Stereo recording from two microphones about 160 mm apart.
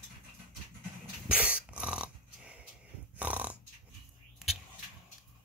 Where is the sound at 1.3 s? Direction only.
5° right (ahead or behind).